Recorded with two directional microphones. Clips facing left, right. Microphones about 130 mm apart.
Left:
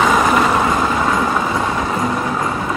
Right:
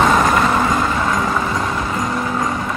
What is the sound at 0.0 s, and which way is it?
Vehicle, centre (ahead or behind).